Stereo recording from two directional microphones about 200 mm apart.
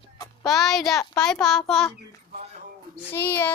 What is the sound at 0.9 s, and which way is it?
Speech, 15° left (ahead or behind).